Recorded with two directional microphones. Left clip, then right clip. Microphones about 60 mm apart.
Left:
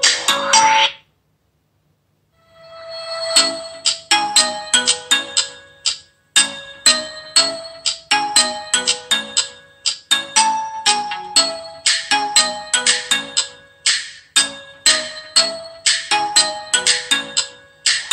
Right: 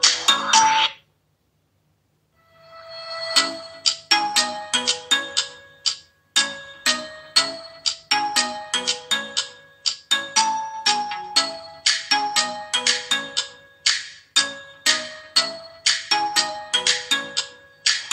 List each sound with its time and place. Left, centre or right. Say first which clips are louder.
0.0 s music: left 2 dB; right
2.7 s music: left 6 dB; left